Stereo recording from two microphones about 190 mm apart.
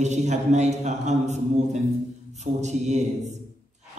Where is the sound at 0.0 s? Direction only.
35° right (ahead or behind).